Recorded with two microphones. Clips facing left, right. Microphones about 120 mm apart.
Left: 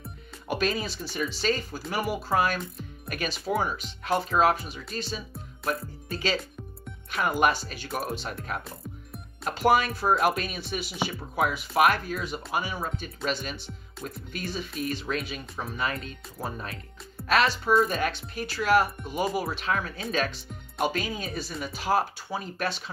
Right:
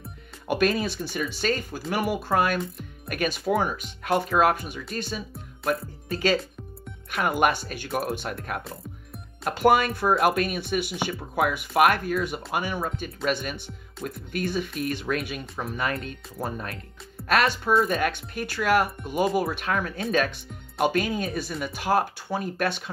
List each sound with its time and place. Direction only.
0.5 s speech: 55° right (ahead or behind)